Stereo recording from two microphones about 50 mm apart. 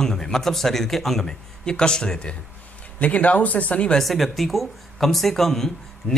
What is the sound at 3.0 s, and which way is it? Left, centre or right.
Speech, left.